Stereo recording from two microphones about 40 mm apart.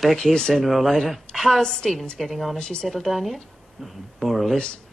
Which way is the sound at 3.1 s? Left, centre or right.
Centre.